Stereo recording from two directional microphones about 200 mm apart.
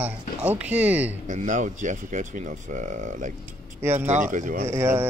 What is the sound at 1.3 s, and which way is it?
Speech, 40° right (ahead or behind).